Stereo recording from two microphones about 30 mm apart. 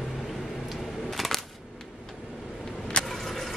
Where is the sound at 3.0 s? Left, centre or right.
Left.